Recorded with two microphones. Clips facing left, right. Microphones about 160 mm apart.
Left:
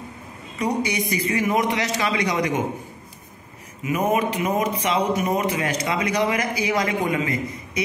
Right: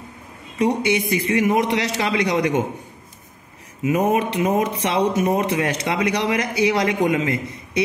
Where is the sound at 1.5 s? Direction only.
25° right (ahead or behind).